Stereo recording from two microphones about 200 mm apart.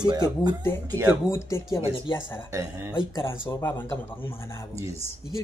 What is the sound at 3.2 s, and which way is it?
Speech, 10° left (ahead or behind).